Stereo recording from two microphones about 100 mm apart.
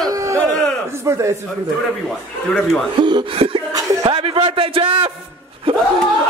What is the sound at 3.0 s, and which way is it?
A man's voice, 50° right (ahead or behind).